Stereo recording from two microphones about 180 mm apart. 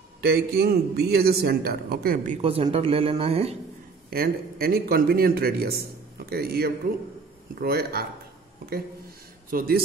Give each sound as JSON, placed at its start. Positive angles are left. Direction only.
{"t": 0.2, "sound": "a man's voice", "side_deg": -60}
{"t": 2.4, "sound": "speech", "side_deg": -30}
{"t": 4.1, "sound": "a man's voice", "side_deg": -55}
{"t": 9.5, "sound": "a man's voice", "side_deg": -55}